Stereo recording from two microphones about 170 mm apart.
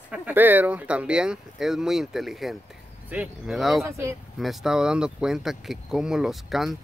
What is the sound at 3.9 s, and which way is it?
Speech, 15° right (ahead or behind).